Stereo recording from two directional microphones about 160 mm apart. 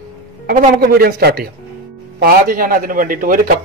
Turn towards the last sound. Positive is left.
turn(degrees=-60)  # may be behind; listen again after turning